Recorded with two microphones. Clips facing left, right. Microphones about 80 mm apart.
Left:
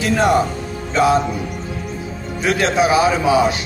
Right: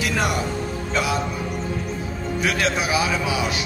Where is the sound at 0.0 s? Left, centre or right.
Left.